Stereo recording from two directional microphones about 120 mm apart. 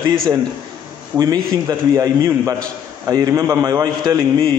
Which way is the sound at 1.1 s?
30° right (ahead or behind).